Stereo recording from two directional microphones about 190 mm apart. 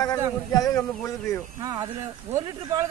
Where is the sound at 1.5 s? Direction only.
20° right (ahead or behind).